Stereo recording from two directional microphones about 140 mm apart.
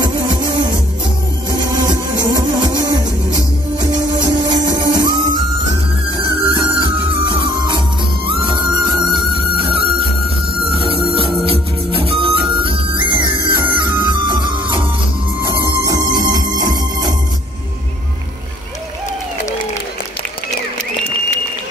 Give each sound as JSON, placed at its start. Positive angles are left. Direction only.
{"t": 0.0, "sound": "music", "side_deg": -35}
{"t": 4.2, "sound": "music", "side_deg": -30}